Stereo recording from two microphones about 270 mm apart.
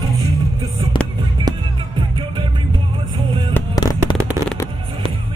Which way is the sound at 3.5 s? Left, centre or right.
Centre.